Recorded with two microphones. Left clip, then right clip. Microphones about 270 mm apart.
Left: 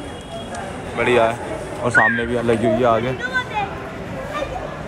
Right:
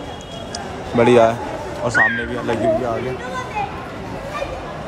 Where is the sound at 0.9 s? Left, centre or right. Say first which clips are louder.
Right 4 dB; centre.